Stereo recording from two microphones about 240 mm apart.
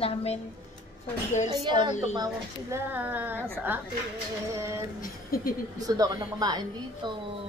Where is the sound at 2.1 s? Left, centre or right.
Centre.